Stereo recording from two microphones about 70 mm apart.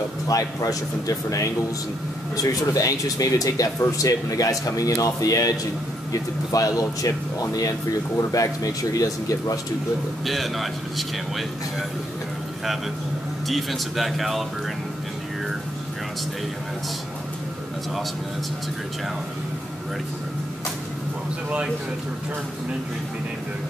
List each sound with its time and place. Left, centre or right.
0.3 s speech: left
10.2 s a man's voice: centre
13.5 s a man's voice: centre